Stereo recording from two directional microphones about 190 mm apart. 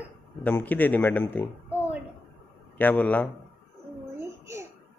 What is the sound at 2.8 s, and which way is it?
Speech, 10° left (ahead or behind).